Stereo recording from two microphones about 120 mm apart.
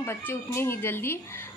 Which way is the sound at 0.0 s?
20° left (ahead or behind).